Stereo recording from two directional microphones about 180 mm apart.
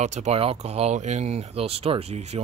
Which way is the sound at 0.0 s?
40° right (ahead or behind).